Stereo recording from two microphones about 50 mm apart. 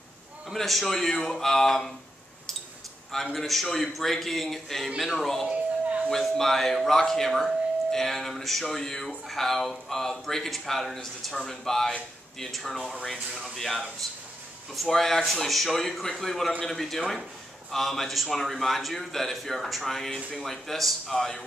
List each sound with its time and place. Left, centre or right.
0.6 s speech: centre
3.3 s a man's voice: centre
5.5 s a sound: right
6.0 s a man's voice: centre